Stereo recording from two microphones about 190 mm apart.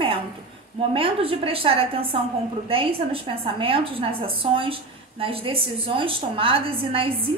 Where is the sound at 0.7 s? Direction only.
30° right (ahead or behind).